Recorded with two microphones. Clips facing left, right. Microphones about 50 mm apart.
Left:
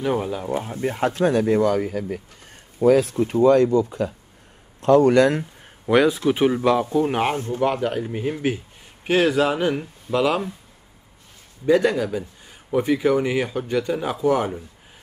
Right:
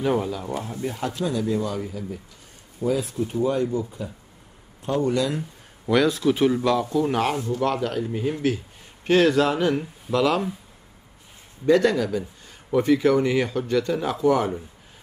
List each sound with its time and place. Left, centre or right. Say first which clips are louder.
0.2 s speech: left 3 dB; left
0.7 s speech: left 8 dB; left
5.9 s speech: left 2 dB; centre
7.3 s speech: even; left
7.6 s speech: left 3 dB; centre
9.0 s speech: even; centre
11.6 s speech: even; centre